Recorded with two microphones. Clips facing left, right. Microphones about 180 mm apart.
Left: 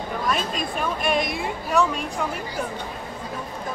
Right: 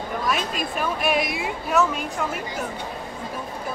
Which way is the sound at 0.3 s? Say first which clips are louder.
Left 1 dB; 5° right (ahead or behind).